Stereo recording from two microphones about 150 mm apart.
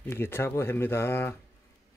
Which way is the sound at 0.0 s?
15° left (ahead or behind).